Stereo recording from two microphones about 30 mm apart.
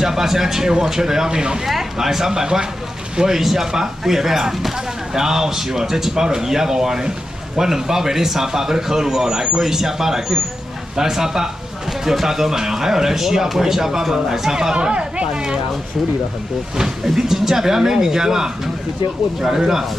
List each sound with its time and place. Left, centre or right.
0.0 s speech: centre
14.8 s speech: right
16.7 s speech: centre